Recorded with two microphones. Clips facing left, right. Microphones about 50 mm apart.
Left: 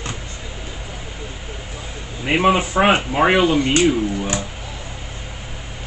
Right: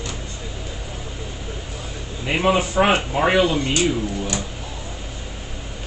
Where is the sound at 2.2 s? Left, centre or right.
Left.